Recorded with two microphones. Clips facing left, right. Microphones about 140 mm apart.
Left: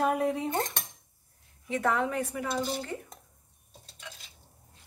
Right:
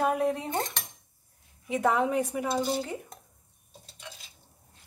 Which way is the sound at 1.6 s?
15° right (ahead or behind).